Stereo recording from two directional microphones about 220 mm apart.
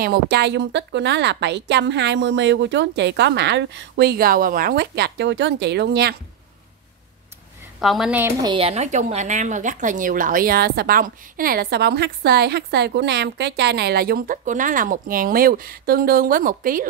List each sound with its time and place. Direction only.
0.0 s speech: 45° right (ahead or behind)
7.8 s a woman's voice: centre (ahead or behind)
8.5 s speech: 25° right (ahead or behind)